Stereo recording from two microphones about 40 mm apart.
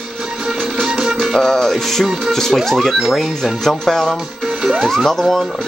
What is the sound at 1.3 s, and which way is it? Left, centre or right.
Speech, centre.